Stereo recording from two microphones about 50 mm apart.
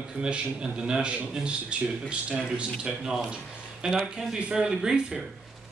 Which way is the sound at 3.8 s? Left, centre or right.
Centre.